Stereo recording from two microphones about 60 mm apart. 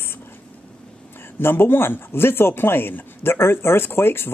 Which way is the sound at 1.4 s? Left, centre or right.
Left.